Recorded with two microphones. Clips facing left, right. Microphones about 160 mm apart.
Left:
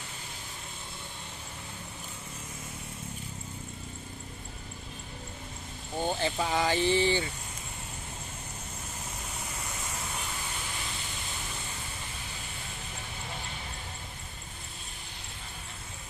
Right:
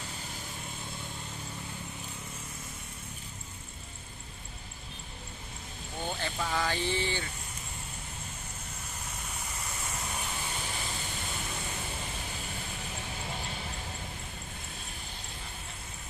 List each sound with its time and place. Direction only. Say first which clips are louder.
6.0 s speech: left 5 dB; 20° left (ahead or behind)